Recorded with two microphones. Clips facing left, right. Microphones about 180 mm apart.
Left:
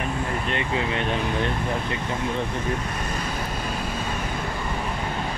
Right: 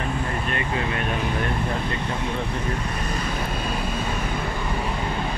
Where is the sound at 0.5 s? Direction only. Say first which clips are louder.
Left 2 dB; 20° left (ahead or behind).